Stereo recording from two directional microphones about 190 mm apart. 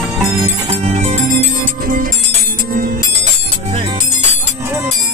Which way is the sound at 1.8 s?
45° right (ahead or behind).